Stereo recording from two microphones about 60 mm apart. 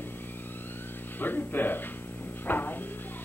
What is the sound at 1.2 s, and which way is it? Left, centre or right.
Speech, left.